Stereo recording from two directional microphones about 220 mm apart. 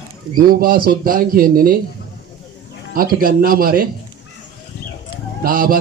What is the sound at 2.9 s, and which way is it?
Speech, 40° right (ahead or behind).